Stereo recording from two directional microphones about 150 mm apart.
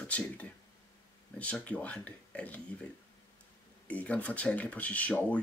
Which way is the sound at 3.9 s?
10° left (ahead or behind).